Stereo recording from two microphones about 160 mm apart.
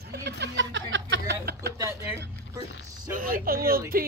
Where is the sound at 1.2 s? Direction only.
85° right.